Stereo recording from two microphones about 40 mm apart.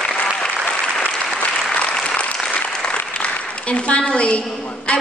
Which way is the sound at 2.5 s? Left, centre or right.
Left.